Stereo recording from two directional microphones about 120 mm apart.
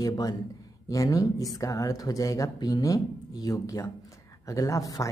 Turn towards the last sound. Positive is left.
turn(degrees=30)  # may be behind; listen again after turning